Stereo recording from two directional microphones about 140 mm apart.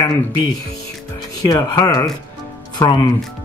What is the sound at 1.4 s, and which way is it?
Speech, 25° left (ahead or behind).